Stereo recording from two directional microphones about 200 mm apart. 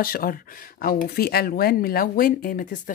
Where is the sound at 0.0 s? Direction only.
45° left (ahead or behind).